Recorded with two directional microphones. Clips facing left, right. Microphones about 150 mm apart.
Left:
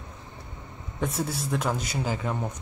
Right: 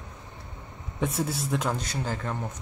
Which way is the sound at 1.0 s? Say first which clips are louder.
Right 1 dB; centre (ahead or behind).